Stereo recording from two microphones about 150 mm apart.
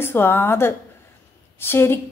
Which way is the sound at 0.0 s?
15° left (ahead or behind).